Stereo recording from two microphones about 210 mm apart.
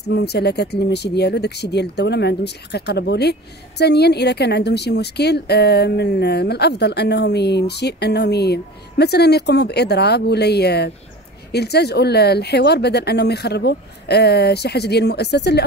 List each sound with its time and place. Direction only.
0.0 s speech: 50° left (ahead or behind)